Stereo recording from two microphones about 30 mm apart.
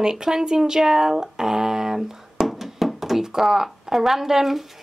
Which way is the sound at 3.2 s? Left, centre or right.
Centre.